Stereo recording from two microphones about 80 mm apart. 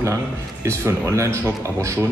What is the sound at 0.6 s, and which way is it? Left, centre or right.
Speech, right.